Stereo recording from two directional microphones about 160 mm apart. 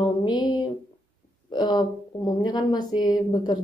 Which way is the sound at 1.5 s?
25° left (ahead or behind).